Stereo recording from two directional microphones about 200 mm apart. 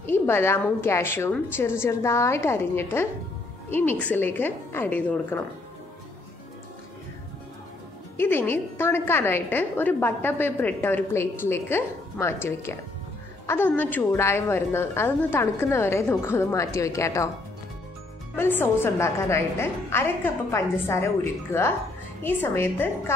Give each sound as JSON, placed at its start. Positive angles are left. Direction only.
{"t": 0.0, "sound": "a woman's voice", "side_deg": 10}
{"t": 8.2, "sound": "a woman's voice", "side_deg": 10}
{"t": 18.3, "sound": "a woman's voice", "side_deg": 10}